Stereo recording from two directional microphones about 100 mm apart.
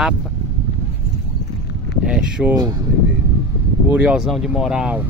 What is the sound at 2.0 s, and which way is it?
Speech, 10° right (ahead or behind).